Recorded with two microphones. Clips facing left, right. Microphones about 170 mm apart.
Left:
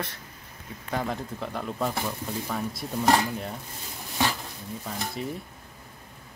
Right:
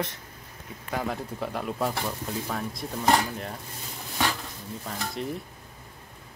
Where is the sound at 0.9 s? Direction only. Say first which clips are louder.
Even; 5° right (ahead or behind).